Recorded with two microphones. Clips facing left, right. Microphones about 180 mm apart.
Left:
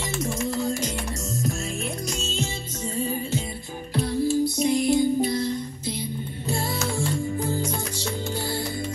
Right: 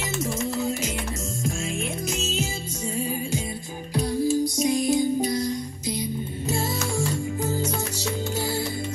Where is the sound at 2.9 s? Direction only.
10° right (ahead or behind).